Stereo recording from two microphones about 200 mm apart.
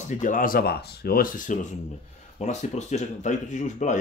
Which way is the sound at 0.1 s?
40° left (ahead or behind).